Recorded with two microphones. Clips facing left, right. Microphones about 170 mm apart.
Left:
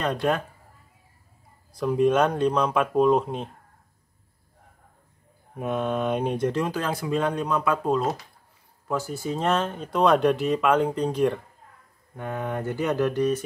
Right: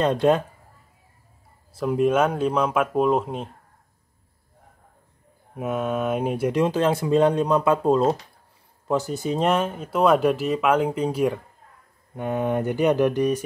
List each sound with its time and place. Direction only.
0.0 s speech: 25° right (ahead or behind)
1.8 s speech: 5° right (ahead or behind)
5.6 s speech: 5° right (ahead or behind)
6.6 s speech: 25° right (ahead or behind); by 11.3 s 5° right (ahead or behind)
12.2 s speech: 20° right (ahead or behind)